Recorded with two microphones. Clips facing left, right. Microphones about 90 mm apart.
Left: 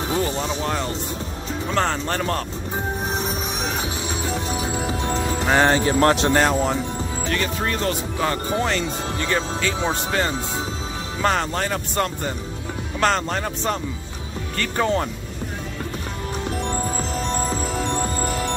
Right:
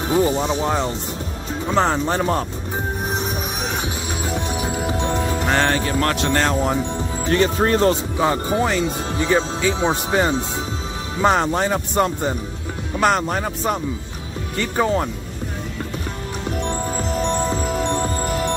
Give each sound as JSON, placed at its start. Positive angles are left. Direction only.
{"t": 0.2, "sound": "speech", "side_deg": -20}
{"t": 5.7, "sound": "speech", "side_deg": 25}
{"t": 6.3, "sound": "speech", "side_deg": 5}
{"t": 7.2, "sound": "speech", "side_deg": -30}
{"t": 8.2, "sound": "speech", "side_deg": -15}